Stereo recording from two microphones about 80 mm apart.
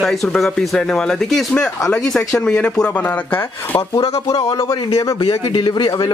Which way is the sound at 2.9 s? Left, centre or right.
Left.